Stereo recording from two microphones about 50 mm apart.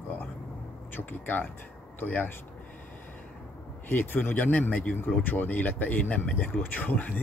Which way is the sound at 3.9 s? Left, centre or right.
Left.